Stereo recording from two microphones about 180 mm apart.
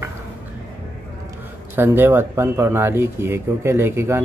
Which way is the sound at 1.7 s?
10° right (ahead or behind).